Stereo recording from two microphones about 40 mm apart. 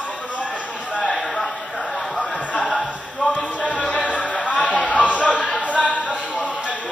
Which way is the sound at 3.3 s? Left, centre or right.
Left.